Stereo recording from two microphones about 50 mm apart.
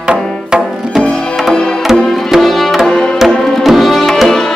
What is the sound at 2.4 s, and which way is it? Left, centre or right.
Music, centre.